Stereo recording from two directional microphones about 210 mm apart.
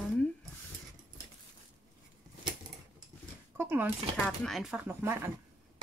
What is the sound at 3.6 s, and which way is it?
Speech, 10° right (ahead or behind).